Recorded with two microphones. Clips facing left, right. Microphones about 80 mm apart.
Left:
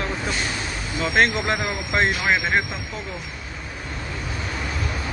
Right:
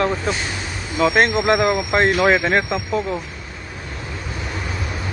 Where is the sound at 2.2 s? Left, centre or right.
Right.